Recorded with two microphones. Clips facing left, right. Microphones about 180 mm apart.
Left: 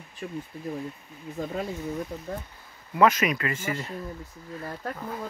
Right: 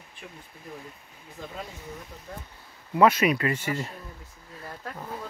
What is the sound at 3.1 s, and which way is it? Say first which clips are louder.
Speech: right 2 dB; 30° right (ahead or behind).